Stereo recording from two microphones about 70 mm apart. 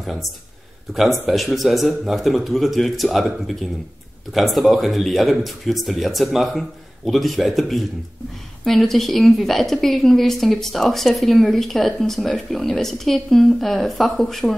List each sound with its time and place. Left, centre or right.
0.0 s a woman's voice: centre